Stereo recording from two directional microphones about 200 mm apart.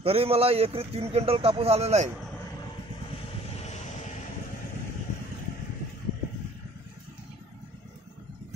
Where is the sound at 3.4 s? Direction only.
35° left (ahead or behind).